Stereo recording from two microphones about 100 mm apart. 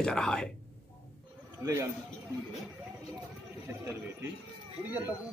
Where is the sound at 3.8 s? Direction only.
25° right (ahead or behind).